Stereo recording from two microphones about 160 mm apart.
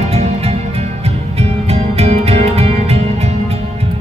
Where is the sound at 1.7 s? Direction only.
40° right (ahead or behind).